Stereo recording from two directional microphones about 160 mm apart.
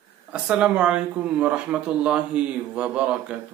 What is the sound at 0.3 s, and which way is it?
Speech, 5° right (ahead or behind).